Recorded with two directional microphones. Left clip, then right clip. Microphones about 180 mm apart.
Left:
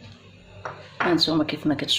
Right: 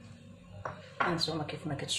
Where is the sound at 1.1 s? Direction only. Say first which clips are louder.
Left 12 dB; 50° left (ahead or behind).